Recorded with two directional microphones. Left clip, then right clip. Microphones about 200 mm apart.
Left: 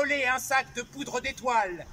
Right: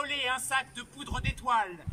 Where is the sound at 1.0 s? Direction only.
25° left (ahead or behind).